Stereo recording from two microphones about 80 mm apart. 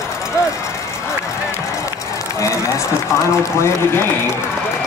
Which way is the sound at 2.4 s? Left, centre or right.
Left.